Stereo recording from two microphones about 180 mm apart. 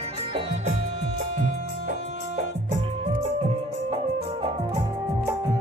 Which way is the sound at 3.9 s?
30° right (ahead or behind).